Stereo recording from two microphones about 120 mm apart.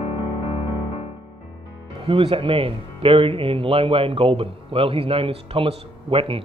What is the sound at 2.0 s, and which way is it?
Speech, 50° right (ahead or behind).